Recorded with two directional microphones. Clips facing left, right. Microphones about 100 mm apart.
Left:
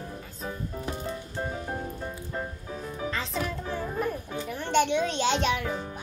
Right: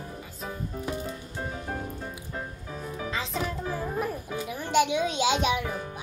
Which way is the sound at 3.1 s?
Centre (ahead or behind).